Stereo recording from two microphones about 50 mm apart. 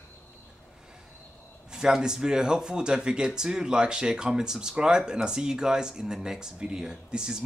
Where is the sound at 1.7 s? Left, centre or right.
Centre.